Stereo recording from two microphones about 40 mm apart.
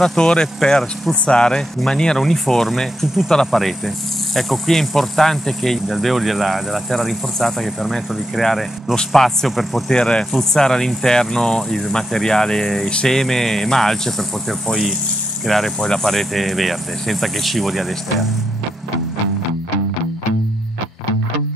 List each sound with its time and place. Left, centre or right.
0.0 s speech: centre
2.1 s speech: centre
5.9 s speech: centre
9.8 s speech: left
15.4 s speech: centre